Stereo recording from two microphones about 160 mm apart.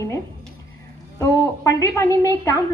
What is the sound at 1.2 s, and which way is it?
A woman's voice, 20° left (ahead or behind).